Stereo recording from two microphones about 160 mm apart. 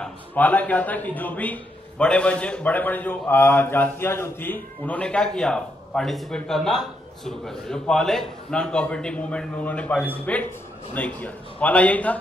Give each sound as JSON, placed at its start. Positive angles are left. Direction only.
{"t": 0.0, "sound": "a man's voice", "side_deg": 10}